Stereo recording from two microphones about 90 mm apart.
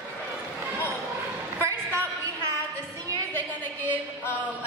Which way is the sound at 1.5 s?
30° right (ahead or behind).